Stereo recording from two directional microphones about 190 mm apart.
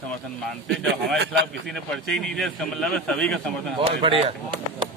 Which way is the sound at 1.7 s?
5° left (ahead or behind).